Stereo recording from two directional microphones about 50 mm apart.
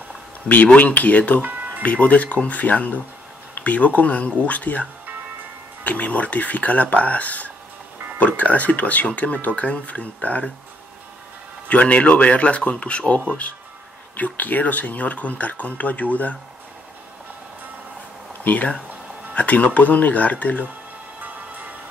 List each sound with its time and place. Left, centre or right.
0.7 s speech: left
5.9 s speech: left
11.7 s speech: left
18.4 s speech: left